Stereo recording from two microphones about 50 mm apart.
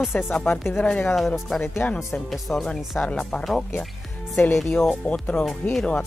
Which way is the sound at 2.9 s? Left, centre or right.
Left.